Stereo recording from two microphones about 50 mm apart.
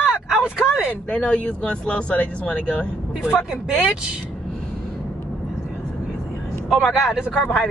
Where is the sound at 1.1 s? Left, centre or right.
Left.